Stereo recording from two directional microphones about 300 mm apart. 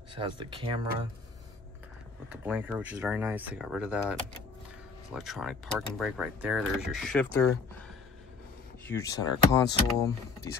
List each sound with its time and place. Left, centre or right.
0.1 s speech: centre
2.4 s speech: centre
8.8 s speech: centre